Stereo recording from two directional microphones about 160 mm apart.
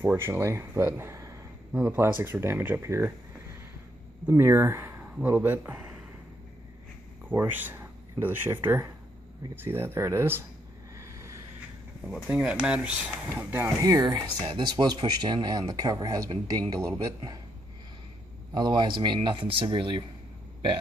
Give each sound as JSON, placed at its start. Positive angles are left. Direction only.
{"t": 0.0, "sound": "speech", "side_deg": -15}
{"t": 4.3, "sound": "speech", "side_deg": -15}
{"t": 7.2, "sound": "speech", "side_deg": -10}
{"t": 11.0, "sound": "vehicle", "side_deg": -20}
{"t": 12.3, "sound": "speech", "side_deg": -5}
{"t": 18.5, "sound": "speech", "side_deg": -25}